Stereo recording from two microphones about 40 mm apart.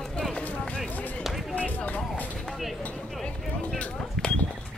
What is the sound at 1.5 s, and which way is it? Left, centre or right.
Music, left.